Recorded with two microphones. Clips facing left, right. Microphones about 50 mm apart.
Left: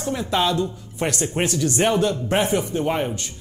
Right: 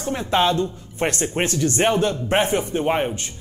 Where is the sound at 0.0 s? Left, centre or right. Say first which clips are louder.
Right 2 dB; right.